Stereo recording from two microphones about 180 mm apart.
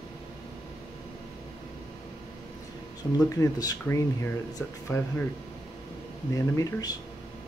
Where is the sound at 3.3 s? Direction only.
20° left (ahead or behind).